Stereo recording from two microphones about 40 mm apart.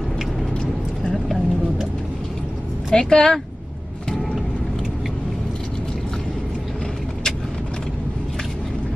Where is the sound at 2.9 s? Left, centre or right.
Centre.